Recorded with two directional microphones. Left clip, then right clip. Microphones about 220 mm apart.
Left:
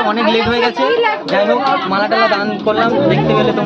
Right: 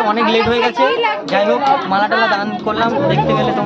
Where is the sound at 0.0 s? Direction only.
5° right (ahead or behind).